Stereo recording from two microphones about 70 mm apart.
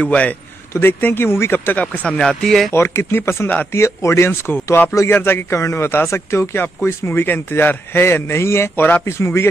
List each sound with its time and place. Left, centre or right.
0.0 s a man's voice: left
0.7 s speech: left
2.0 s speech: centre
2.7 s speech: left